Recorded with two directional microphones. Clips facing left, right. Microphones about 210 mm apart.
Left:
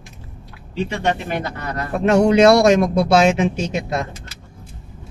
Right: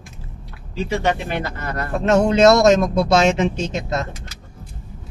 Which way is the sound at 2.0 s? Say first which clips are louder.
Left 1 dB; 10° left (ahead or behind).